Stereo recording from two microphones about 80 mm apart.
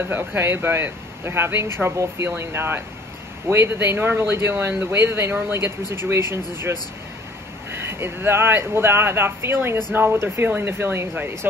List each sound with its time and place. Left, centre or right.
0.1 s speech: right
7.9 s speech: right